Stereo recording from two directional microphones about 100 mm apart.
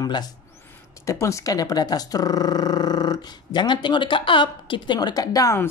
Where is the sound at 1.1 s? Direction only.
30° left (ahead or behind).